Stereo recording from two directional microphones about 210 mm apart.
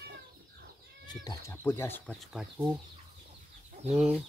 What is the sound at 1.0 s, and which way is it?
Speech, 20° left (ahead or behind).